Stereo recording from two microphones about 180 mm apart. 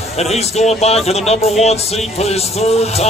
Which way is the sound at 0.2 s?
35° left (ahead or behind).